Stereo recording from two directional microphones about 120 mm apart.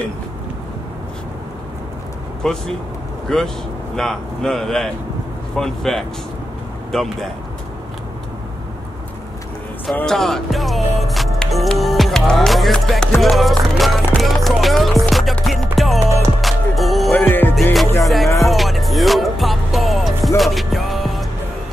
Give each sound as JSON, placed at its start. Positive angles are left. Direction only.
{"t": 2.4, "sound": "speech", "side_deg": 5}
{"t": 10.0, "sound": "music", "side_deg": 5}
{"t": 17.1, "sound": "music", "side_deg": 15}
{"t": 18.0, "sound": "music", "side_deg": 0}